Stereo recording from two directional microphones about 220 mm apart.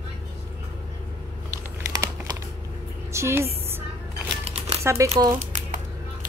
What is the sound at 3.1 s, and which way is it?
Speech, 10° right (ahead or behind).